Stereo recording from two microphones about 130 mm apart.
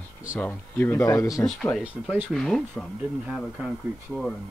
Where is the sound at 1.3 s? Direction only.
5° left (ahead or behind).